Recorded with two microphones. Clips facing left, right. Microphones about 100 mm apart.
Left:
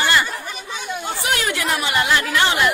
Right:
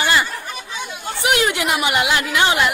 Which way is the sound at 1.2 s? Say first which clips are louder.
Right 5 dB; 20° right (ahead or behind).